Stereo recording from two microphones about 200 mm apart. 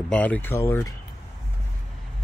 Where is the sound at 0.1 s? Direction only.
5° left (ahead or behind).